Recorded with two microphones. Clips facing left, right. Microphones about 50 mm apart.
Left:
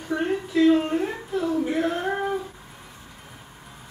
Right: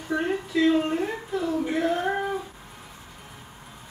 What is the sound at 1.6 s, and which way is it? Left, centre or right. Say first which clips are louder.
Singing: left 1 dB; centre.